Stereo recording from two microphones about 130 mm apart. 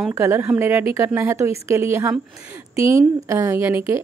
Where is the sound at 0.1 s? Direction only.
20° right (ahead or behind).